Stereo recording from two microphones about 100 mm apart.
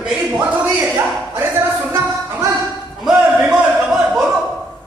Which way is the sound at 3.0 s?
10° right (ahead or behind).